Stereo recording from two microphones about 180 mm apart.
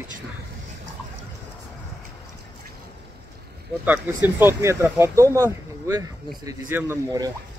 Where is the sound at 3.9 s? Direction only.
10° right (ahead or behind).